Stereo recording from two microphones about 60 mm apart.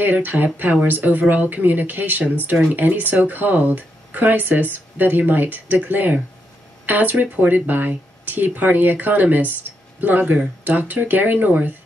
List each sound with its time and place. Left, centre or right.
0.0 s speech: right